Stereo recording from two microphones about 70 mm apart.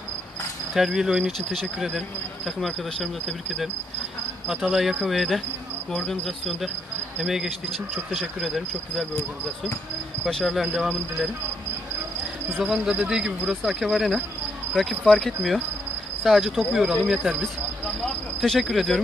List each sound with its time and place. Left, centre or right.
0.7 s speech: centre
10.2 s speech: centre
12.5 s speech: centre
12.9 s speech: centre
13.7 s speech: centre
18.4 s speech: centre